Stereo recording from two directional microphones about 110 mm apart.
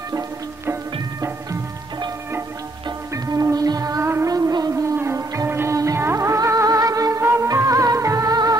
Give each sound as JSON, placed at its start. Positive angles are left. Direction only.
{"t": 3.3, "sound": "music", "side_deg": -35}